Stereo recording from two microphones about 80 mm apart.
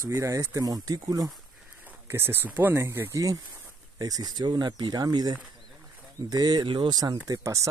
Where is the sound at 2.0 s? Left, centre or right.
Right.